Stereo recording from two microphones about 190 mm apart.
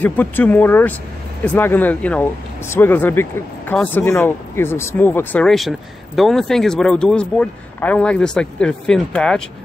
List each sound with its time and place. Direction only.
0.0 s speech: 10° left (ahead or behind)